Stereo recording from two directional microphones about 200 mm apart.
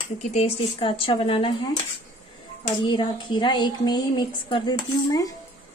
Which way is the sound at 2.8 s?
25° left (ahead or behind).